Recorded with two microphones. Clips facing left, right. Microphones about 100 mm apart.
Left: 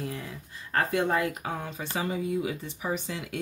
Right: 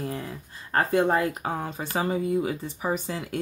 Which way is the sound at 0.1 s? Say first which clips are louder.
Right 4 dB; 40° right (ahead or behind).